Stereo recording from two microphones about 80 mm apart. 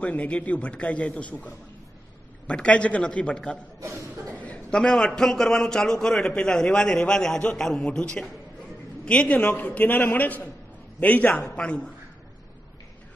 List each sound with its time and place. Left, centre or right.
0.0 s a man's voice: centre